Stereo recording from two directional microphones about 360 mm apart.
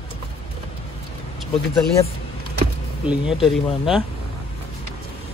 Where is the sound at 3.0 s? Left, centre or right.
Centre.